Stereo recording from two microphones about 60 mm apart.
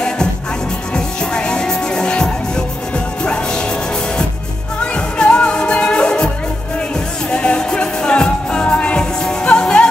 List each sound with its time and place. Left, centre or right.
0.9 s music: centre
4.9 s music: centre